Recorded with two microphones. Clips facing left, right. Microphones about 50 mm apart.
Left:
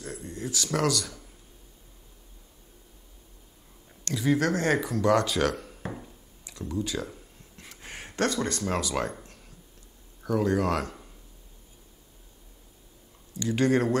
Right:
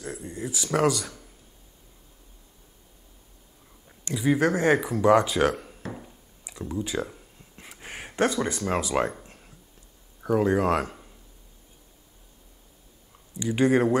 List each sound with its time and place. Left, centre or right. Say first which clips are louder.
0.0 s speech: right 2 dB; centre
4.0 s speech: right 2 dB; centre
5.9 s a sound: right 1 dB; centre
8.2 s speech: right 3 dB; centre
9.2 s a sound: right 1 dB; centre
10.2 s speech: right 3 dB; centre
13.4 s speech: right 3 dB; centre